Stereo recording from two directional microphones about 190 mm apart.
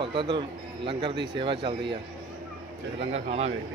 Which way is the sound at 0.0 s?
25° right (ahead or behind).